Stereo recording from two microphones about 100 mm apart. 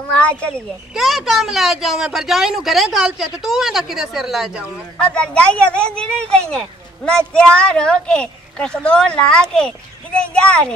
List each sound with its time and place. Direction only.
0.2 s a sound: 10° left (ahead or behind)
0.9 s speech: centre (ahead or behind)
4.9 s speech: 10° left (ahead or behind)